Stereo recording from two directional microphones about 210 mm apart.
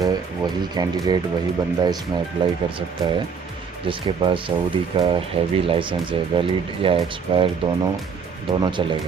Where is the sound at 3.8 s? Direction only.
25° right (ahead or behind).